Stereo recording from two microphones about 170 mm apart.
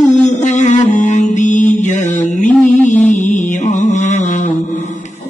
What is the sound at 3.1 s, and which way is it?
Mantra, 45° left (ahead or behind).